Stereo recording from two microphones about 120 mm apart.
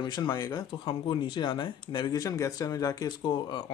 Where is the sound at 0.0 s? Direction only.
35° left (ahead or behind).